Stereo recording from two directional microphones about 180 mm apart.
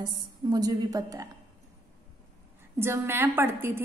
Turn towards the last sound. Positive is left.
turn(degrees=-15)  # may be behind; listen again after turning